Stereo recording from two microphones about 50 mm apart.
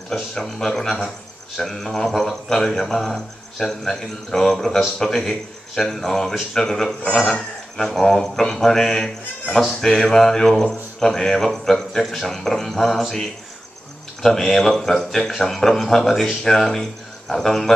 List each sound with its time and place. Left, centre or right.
0.1 s speech: centre
7.1 s a man's voice: left
7.7 s speech: centre
14.2 s speech: centre